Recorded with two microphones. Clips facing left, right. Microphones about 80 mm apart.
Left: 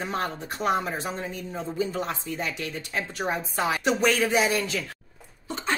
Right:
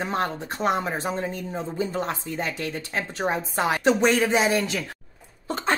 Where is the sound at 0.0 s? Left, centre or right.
Right.